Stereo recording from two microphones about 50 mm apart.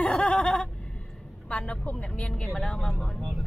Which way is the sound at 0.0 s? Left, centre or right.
Left.